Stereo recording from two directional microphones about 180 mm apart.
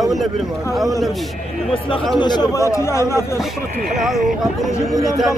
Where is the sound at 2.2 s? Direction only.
25° left (ahead or behind).